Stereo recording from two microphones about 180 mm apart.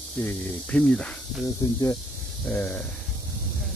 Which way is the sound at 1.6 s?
15° left (ahead or behind).